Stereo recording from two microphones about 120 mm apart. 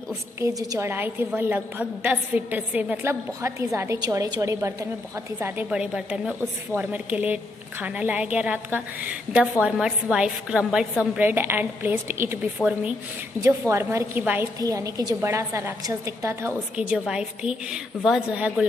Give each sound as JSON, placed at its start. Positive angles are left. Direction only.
{"t": 0.4, "sound": "a woman's voice", "side_deg": -30}
{"t": 0.8, "sound": "a woman's voice", "side_deg": -15}
{"t": 5.7, "sound": "a woman's voice", "side_deg": -10}
{"t": 12.5, "sound": "a woman's voice", "side_deg": -10}
{"t": 13.4, "sound": "a woman's voice", "side_deg": -20}
{"t": 14.6, "sound": "a woman's voice", "side_deg": -30}
{"t": 16.7, "sound": "a woman's voice", "side_deg": -5}